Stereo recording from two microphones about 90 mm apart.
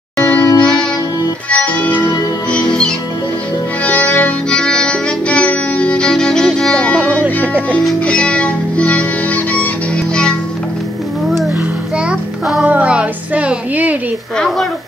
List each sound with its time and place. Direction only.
0.2 s music: 15° left (ahead or behind)
12.1 s child singing: 5° right (ahead or behind)
12.6 s music: 15° right (ahead or behind)